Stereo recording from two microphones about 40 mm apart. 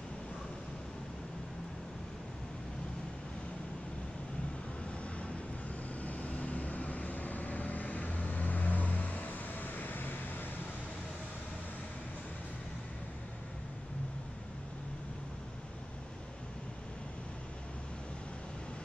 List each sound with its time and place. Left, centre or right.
6.0 s vehicle: left